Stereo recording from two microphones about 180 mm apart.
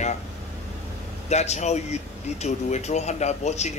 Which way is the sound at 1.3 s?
40° left (ahead or behind).